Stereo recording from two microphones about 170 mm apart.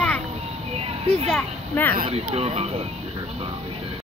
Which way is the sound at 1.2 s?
5° left (ahead or behind).